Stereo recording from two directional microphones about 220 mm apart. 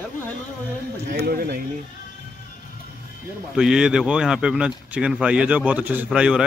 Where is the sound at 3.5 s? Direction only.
5° right (ahead or behind).